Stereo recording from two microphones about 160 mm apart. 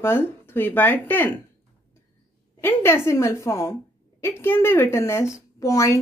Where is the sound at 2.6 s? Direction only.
15° left (ahead or behind).